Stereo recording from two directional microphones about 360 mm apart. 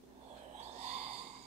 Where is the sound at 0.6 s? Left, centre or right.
Centre.